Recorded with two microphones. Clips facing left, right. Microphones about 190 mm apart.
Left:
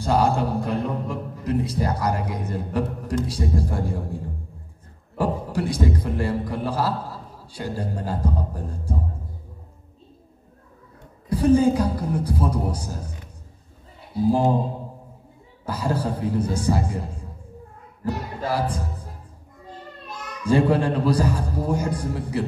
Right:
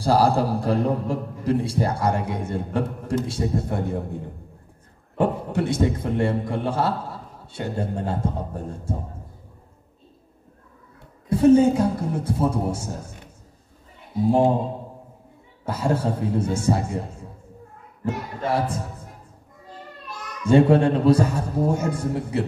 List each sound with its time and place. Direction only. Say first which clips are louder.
0.0 s a man's voice: right 2 dB; 35° right (ahead or behind)
11.2 s a man's voice: right 3 dB; 25° right (ahead or behind)
15.6 s a man's voice: right 2 dB; 25° right (ahead or behind)
18.5 s a man's voice: right 1 dB; 25° right (ahead or behind)
20.4 s a man's voice: right 3 dB; 25° right (ahead or behind)